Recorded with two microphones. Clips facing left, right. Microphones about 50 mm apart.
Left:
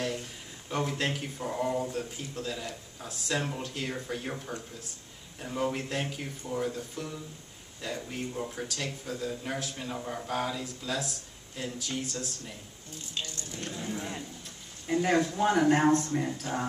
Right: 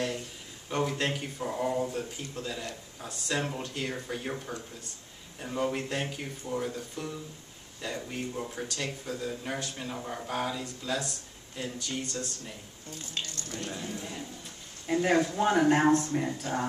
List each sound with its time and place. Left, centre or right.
0.7 s speech: centre
13.2 s speech: right
14.9 s speech: centre